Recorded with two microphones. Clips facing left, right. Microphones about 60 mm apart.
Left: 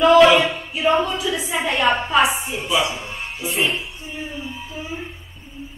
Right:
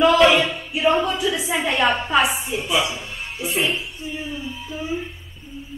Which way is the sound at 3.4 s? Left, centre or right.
Centre.